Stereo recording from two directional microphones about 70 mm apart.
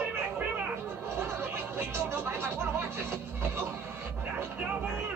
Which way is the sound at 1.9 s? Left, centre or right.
Right.